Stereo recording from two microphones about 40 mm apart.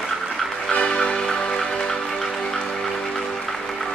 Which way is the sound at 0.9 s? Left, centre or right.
Centre.